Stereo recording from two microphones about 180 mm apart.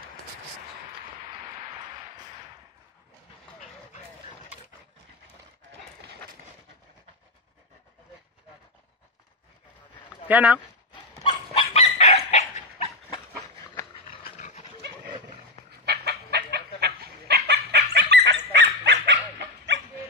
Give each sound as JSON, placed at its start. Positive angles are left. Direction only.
{"t": 10.2, "sound": "speech", "side_deg": -10}
{"t": 11.1, "sound": "dog", "side_deg": 35}
{"t": 14.1, "sound": "dog", "side_deg": 35}
{"t": 15.8, "sound": "chicken", "side_deg": -65}